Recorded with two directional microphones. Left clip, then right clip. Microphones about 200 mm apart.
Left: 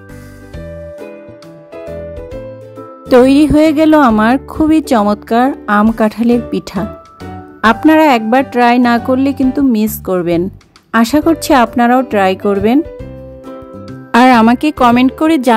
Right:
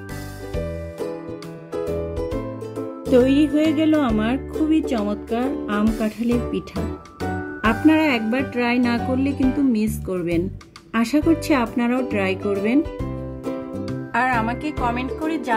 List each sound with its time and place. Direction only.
2.1 s music: centre (ahead or behind)
3.1 s speech: 55° left (ahead or behind)
7.6 s speech: 50° left (ahead or behind)
14.1 s speech: 55° left (ahead or behind)